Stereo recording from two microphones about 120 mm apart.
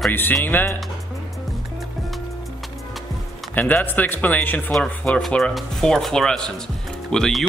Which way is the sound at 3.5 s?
15° left (ahead or behind).